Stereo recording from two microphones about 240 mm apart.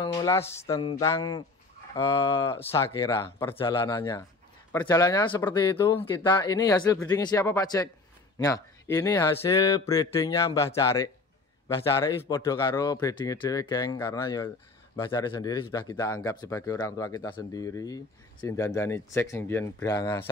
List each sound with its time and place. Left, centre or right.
0.0 s speech: centre